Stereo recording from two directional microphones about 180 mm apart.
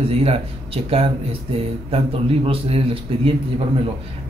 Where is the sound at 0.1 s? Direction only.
35° right (ahead or behind).